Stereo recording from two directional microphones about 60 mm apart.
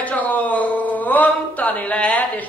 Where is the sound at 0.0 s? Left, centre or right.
Left.